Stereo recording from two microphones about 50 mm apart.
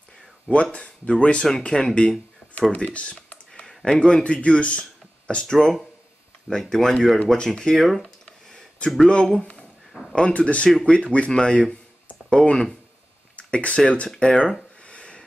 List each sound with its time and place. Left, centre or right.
0.5 s speech: left
2.7 s speech: left; by 8.0 s centre
9.0 s speech: centre
9.4 s a sound: left
10.1 s speech: left
13.4 s speech: left
14.9 s a sound: left